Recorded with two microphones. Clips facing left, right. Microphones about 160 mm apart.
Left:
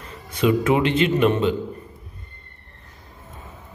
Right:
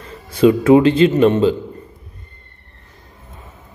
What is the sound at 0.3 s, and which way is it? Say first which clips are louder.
A man's voice: right 8 dB; 30° right (ahead or behind).